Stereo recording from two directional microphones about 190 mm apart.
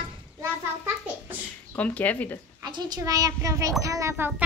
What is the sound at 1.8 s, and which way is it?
Speech, 10° left (ahead or behind).